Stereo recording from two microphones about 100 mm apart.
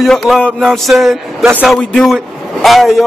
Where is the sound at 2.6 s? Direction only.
Centre (ahead or behind).